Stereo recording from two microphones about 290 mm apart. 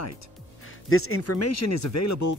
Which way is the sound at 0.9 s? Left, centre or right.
Left.